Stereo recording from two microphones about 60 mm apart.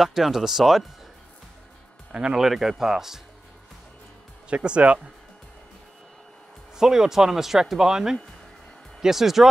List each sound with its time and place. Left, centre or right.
0.0 s speech: centre
2.1 s speech: centre
4.5 s speech: centre
6.8 s speech: centre